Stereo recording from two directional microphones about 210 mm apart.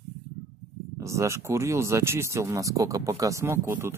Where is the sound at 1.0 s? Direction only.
15° right (ahead or behind).